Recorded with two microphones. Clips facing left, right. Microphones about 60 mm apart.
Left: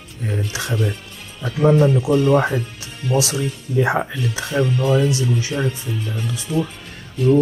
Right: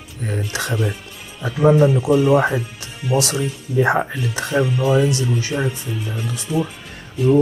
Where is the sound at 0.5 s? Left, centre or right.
Right.